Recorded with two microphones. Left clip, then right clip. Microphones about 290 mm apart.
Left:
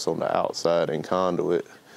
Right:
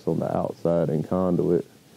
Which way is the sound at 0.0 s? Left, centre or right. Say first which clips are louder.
Left 2 dB; left.